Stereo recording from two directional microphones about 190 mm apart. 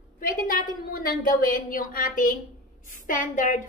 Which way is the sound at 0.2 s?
45° left (ahead or behind).